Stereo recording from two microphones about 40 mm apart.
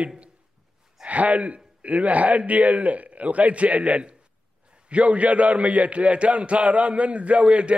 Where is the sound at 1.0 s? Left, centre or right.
Right.